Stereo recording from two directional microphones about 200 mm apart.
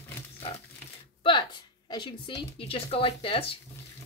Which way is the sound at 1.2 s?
25° left (ahead or behind).